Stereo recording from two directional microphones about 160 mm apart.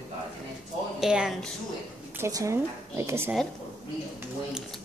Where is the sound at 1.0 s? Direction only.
5° right (ahead or behind).